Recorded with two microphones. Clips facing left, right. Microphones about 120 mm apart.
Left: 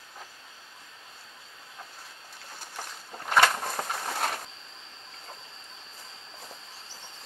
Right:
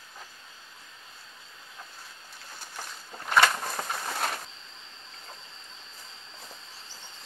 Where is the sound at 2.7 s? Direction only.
25° left (ahead or behind).